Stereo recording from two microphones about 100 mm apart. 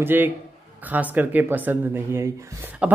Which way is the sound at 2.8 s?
10° right (ahead or behind).